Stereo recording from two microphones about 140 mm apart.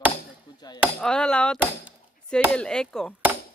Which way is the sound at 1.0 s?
5° left (ahead or behind).